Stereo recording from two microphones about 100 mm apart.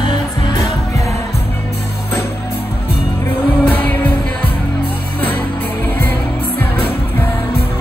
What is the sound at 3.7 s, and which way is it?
Music, 15° left (ahead or behind).